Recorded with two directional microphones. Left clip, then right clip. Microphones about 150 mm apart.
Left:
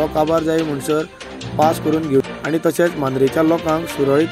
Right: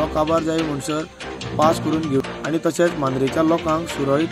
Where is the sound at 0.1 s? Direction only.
15° left (ahead or behind).